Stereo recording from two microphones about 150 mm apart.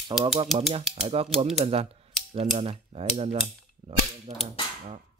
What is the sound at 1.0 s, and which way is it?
Speech, 40° right (ahead or behind).